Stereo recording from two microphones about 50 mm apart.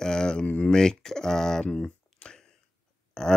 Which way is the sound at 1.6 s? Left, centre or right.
Left.